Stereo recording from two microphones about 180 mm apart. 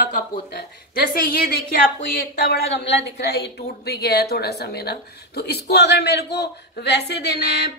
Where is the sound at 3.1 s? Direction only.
65° left (ahead or behind).